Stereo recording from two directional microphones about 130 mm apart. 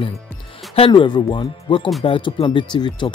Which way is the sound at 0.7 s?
40° left (ahead or behind).